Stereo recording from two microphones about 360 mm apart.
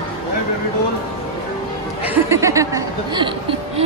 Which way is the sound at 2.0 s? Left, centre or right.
Centre.